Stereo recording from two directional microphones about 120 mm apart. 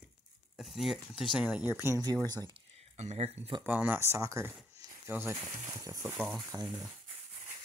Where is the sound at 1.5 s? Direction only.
10° right (ahead or behind).